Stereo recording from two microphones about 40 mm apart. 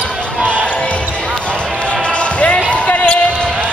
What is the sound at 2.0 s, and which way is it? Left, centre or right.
Basketball bounce, left.